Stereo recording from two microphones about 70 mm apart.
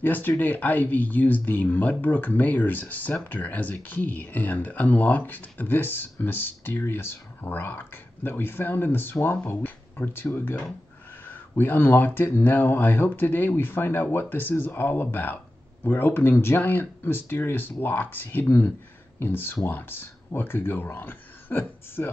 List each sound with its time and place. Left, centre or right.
0.0 s speech: left
11.2 s speech: left